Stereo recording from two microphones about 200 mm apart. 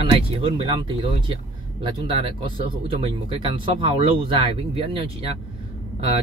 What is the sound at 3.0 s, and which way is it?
Speech, 25° right (ahead or behind).